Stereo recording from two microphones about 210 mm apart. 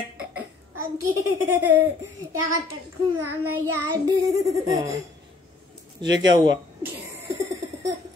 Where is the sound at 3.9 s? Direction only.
15° right (ahead or behind).